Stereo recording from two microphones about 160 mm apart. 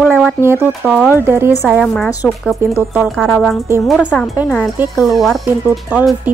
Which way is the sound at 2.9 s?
Centre (ahead or behind).